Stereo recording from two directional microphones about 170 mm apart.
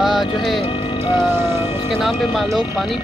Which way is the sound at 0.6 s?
30° left (ahead or behind).